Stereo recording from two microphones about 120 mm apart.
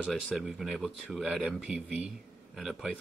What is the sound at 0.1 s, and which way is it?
Speech, centre (ahead or behind).